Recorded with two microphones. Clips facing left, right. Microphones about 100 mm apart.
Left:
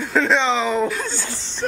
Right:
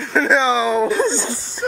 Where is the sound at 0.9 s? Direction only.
25° right (ahead or behind).